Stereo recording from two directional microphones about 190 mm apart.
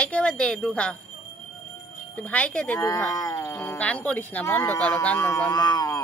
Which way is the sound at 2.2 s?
5° left (ahead or behind).